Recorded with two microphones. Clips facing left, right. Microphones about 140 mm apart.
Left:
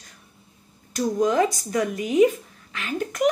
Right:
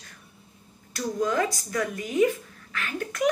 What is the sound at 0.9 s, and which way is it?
Speech, 20° left (ahead or behind).